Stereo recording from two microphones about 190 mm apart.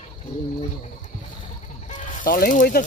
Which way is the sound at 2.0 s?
45° left (ahead or behind).